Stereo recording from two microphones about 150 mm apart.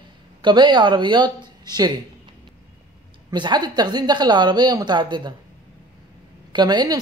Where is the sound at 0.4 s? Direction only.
30° right (ahead or behind).